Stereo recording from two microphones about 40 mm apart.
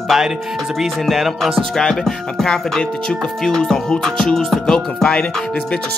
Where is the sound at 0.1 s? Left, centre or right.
Centre.